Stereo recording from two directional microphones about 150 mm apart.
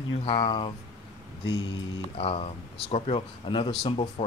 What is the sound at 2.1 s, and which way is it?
Speech, 40° left (ahead or behind).